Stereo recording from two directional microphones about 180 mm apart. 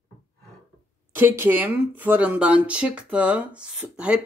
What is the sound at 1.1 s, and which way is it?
Speech, 10° right (ahead or behind).